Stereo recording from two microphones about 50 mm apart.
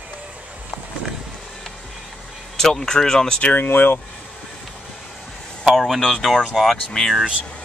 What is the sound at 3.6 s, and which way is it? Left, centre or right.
Speech, left.